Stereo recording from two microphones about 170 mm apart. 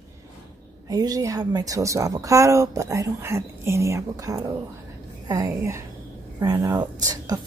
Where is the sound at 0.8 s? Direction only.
20° right (ahead or behind).